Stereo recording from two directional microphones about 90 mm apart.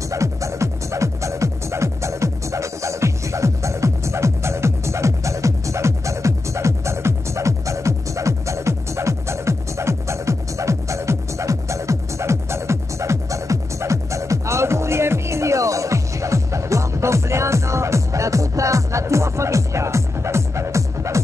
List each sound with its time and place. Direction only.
0.1 s music: 35° right (ahead or behind)